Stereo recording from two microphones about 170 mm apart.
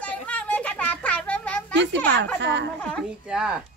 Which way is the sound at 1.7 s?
90° right.